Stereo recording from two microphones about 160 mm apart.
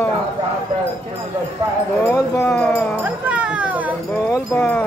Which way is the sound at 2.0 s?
15° left (ahead or behind).